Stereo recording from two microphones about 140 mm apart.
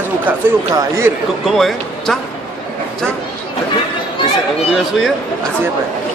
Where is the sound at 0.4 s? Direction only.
15° right (ahead or behind).